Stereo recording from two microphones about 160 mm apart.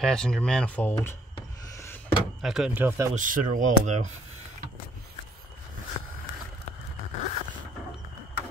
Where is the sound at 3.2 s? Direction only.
55° right (ahead or behind).